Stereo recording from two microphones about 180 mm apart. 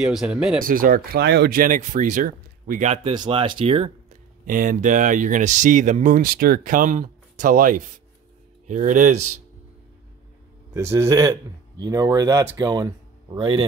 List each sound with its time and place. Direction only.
0.0 s speech: 5° right (ahead or behind)
0.7 s speech: 50° right (ahead or behind)
3.1 s speech: 30° right (ahead or behind)
4.5 s speech: 50° right (ahead or behind)
10.7 s speech: 15° right (ahead or behind)